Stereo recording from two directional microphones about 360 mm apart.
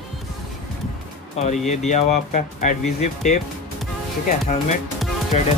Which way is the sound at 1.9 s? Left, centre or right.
Centre.